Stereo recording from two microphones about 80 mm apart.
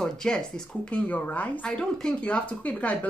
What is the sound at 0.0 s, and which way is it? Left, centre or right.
Speech, centre.